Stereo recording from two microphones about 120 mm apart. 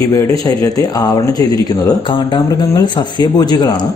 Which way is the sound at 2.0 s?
45° left (ahead or behind).